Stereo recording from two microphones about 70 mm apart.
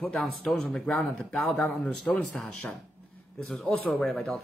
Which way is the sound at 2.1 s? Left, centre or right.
Left.